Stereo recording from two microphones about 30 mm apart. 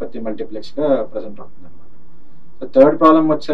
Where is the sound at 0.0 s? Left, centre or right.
Centre.